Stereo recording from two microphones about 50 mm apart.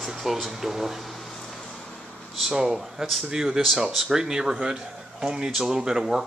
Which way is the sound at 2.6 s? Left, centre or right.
Centre.